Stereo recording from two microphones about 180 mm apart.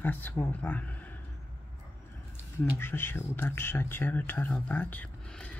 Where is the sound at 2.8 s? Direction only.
10° left (ahead or behind).